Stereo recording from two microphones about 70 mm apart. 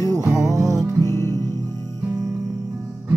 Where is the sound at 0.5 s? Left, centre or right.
Right.